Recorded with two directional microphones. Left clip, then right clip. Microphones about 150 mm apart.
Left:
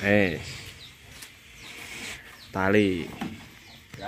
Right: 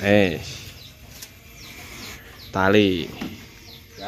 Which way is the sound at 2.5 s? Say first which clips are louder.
Right 5 dB; 5° right (ahead or behind).